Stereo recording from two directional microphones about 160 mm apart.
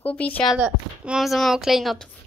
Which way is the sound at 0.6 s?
5° right (ahead or behind).